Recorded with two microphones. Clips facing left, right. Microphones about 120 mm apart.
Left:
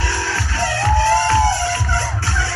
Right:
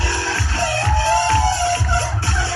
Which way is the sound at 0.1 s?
20° right (ahead or behind).